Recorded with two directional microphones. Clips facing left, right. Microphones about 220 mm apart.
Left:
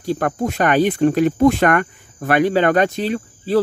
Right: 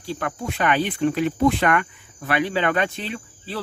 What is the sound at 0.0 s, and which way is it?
Speech, 45° left (ahead or behind).